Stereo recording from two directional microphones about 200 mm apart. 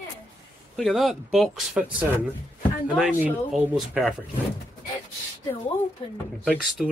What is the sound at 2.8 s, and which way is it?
Speech, 5° right (ahead or behind).